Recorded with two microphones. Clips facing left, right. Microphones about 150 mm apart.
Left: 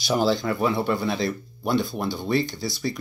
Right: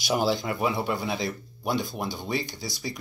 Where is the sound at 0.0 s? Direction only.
10° right (ahead or behind).